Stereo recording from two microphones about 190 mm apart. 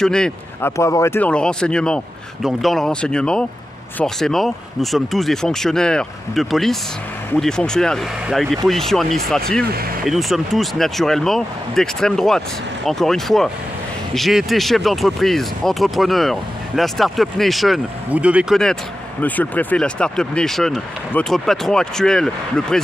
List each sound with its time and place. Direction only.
0.0 s speech: 5° left (ahead or behind)